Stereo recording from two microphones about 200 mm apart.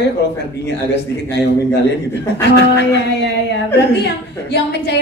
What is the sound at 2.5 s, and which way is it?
A woman's voice, 60° left (ahead or behind).